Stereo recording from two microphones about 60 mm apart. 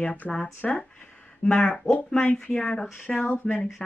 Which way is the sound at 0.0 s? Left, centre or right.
Centre.